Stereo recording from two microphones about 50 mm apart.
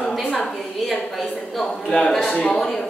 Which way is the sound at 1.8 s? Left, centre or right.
Centre.